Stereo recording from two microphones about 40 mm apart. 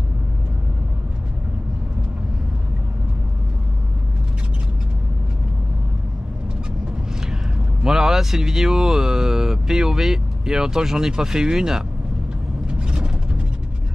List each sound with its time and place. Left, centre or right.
7.8 s speech: centre
12.6 s vehicle: right